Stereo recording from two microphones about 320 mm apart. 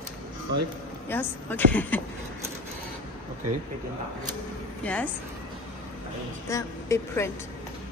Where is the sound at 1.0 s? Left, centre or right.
Centre.